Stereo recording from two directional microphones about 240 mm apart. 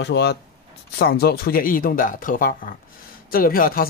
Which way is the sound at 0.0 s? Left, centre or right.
Left.